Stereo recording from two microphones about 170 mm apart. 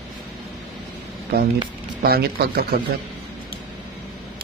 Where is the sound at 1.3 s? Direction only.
70° right (ahead or behind).